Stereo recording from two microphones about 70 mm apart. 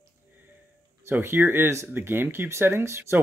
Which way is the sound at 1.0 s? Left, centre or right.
Right.